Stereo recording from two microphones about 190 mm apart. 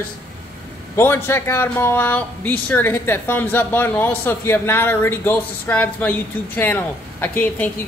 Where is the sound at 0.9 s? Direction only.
15° left (ahead or behind).